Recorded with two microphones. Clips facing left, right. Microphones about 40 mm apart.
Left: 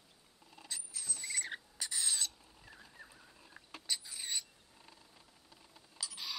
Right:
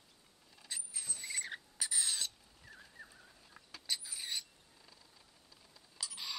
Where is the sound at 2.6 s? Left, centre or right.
Left.